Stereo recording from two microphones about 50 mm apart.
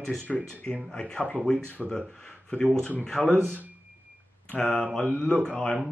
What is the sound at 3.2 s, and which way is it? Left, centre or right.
Speech, right.